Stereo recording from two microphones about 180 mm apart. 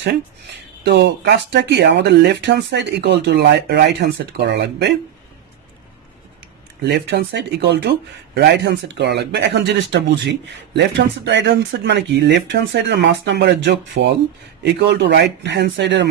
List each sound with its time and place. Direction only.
0.8 s speech: 70° right (ahead or behind)
6.9 s speech: 70° right (ahead or behind)
14.6 s speech: 70° right (ahead or behind)